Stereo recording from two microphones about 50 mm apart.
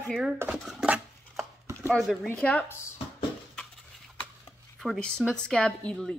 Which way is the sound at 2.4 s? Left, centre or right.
Centre.